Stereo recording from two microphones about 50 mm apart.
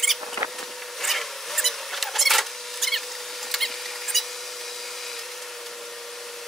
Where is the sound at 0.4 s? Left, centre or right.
Right.